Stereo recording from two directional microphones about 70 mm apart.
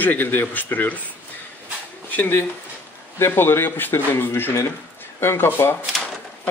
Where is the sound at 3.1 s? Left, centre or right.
Left.